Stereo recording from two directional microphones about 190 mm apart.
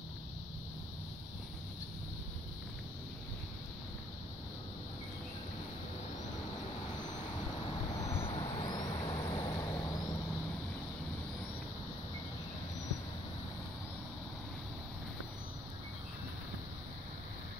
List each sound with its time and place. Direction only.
7.6 s vehicle: 30° left (ahead or behind)